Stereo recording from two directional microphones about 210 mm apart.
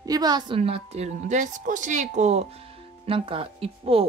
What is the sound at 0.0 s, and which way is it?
A woman's voice, 20° right (ahead or behind).